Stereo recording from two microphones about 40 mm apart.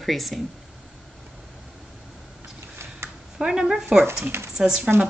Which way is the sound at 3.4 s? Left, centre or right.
Centre.